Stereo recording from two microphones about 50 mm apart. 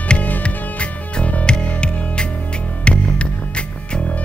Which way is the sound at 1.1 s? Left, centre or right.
Left.